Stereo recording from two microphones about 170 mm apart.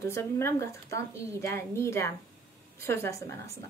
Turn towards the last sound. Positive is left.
turn(degrees=15)  # may be behind; listen again after turning